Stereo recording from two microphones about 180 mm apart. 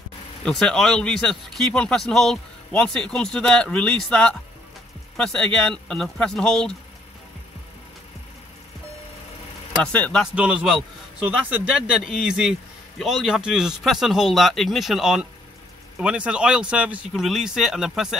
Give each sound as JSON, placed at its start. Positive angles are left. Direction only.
{"t": 0.4, "sound": "speech", "side_deg": 5}
{"t": 9.9, "sound": "speech", "side_deg": 5}
{"t": 10.3, "sound": "a man's voice", "side_deg": -5}